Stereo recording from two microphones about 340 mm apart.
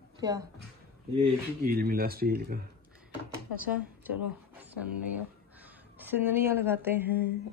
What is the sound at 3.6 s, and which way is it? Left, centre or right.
A woman's voice, centre.